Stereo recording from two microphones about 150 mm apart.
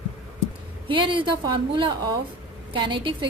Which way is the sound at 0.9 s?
35° right (ahead or behind).